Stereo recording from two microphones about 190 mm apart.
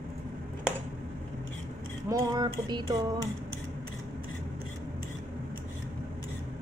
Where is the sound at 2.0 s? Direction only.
20° right (ahead or behind).